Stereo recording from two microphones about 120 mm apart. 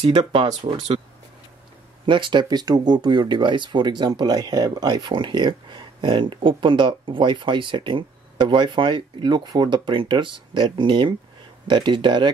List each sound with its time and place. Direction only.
0.2 s speech: 55° right (ahead or behind)
2.0 s speech: 40° right (ahead or behind)